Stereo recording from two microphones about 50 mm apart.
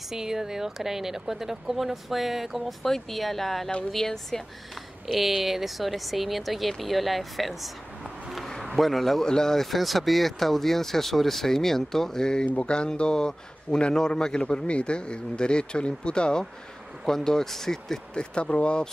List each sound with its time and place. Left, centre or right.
0.1 s speech: centre
5.0 s speech: centre
8.4 s a sound: centre
8.7 s a man's voice: centre
18.3 s a man's voice: left